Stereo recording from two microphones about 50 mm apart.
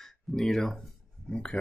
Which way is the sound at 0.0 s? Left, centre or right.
Centre.